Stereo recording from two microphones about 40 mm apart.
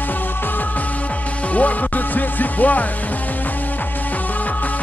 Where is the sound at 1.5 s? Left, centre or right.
Left.